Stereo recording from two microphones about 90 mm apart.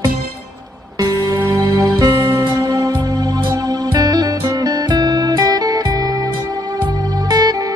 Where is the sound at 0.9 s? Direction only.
40° right (ahead or behind).